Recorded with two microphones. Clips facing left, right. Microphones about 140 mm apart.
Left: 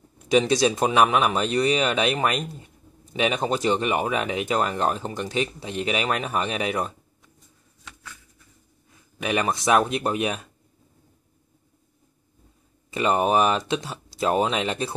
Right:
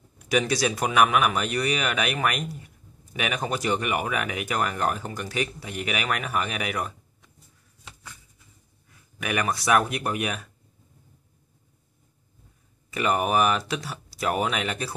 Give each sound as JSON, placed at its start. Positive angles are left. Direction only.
{"t": 0.3, "sound": "speech", "side_deg": 25}
{"t": 8.0, "sound": "a sound", "side_deg": -10}
{"t": 9.2, "sound": "speech", "side_deg": 25}
{"t": 12.9, "sound": "speech", "side_deg": 25}